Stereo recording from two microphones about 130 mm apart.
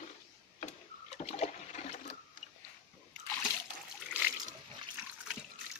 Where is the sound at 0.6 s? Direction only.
55° left (ahead or behind).